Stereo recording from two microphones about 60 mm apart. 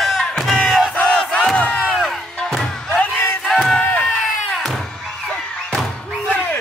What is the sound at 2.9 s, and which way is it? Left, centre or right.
Battle cry, left.